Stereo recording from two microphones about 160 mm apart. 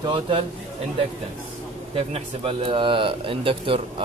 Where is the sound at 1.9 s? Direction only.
35° right (ahead or behind).